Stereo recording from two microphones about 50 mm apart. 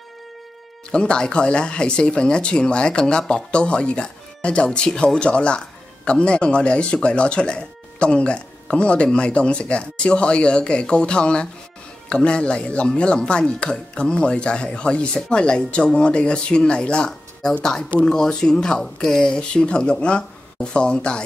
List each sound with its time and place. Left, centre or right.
0.9 s speech: centre